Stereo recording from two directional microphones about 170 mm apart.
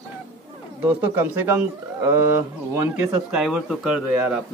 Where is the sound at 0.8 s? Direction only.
10° right (ahead or behind).